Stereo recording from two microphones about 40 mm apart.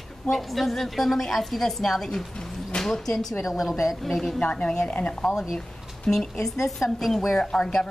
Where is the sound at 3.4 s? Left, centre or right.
Centre.